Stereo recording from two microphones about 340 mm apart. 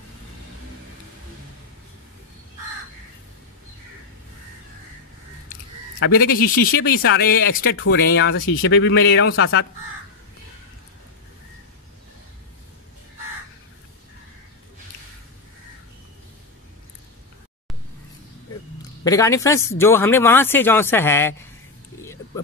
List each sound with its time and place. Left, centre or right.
5.9 s speech: left
19.0 s speech: centre
22.0 s vehicle: centre